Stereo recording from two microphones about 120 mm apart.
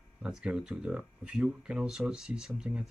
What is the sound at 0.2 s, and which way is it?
Speech, 5° right (ahead or behind).